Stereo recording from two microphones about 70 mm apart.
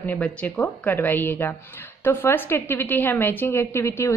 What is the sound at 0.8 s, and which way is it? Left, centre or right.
A woman's voice, left.